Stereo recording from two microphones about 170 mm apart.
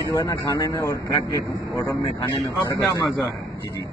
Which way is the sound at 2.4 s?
Centre (ahead or behind).